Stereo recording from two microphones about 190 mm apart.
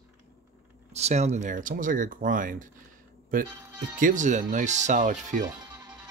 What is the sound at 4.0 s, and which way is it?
Speech, 40° right (ahead or behind).